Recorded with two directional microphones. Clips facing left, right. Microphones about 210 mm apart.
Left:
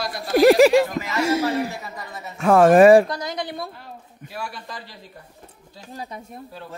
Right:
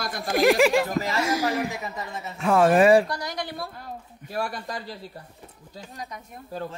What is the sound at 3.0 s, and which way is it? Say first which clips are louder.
Speech: left 3 dB; 20° left (ahead or behind).